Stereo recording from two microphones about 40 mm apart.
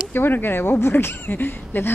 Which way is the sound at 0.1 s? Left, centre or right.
Left.